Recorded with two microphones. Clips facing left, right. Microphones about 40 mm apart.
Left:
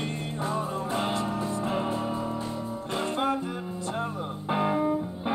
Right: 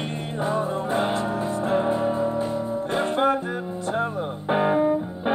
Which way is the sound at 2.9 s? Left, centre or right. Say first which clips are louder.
Right 5 dB; right.